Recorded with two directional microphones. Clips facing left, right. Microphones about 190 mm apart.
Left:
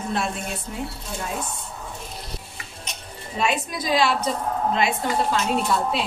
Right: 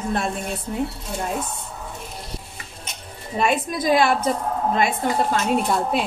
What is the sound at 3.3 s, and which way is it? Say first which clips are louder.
A woman's voice: right 3 dB; 50° right (ahead or behind).